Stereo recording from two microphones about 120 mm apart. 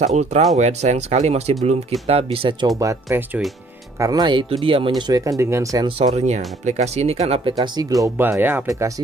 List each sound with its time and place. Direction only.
0.0 s speech: 65° right (ahead or behind); by 2.7 s 45° right (ahead or behind)
2.8 s speech: 25° right (ahead or behind)
5.9 s speech: 55° right (ahead or behind)
7.6 s speech: 35° right (ahead or behind)
8.2 s speech: 15° right (ahead or behind)
8.6 s speech: 25° right (ahead or behind)